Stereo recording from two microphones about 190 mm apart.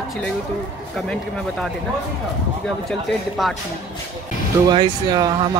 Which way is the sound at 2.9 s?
Centre (ahead or behind).